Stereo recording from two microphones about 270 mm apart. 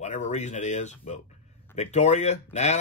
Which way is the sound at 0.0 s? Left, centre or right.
Left.